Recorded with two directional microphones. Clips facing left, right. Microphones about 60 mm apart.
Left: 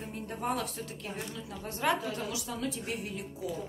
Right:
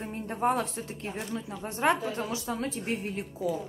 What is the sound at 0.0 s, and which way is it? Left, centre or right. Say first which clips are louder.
A woman's voice: right 7 dB; right.